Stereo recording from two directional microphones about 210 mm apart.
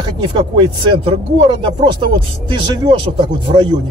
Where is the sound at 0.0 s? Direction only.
25° right (ahead or behind).